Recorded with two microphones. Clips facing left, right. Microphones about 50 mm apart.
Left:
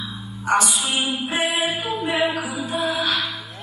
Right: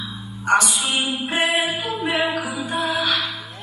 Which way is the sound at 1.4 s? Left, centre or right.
Right.